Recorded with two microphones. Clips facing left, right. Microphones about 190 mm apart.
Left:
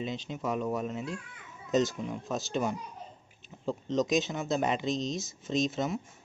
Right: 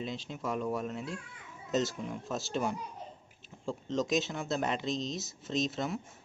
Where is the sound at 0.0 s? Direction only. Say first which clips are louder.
Left 3 dB; centre (ahead or behind).